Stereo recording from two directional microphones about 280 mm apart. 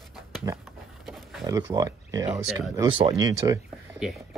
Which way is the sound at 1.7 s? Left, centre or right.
Centre.